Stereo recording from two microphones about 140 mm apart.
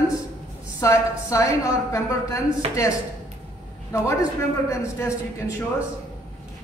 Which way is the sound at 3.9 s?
20° left (ahead or behind).